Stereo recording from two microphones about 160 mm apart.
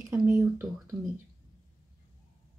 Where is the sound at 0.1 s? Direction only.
15° right (ahead or behind).